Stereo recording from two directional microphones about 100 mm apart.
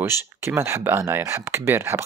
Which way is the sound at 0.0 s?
25° right (ahead or behind).